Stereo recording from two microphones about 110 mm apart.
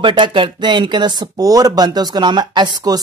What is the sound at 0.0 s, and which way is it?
A woman's voice, 50° right (ahead or behind).